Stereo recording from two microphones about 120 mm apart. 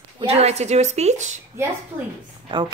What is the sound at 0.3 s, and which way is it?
A woman's voice, 60° right (ahead or behind).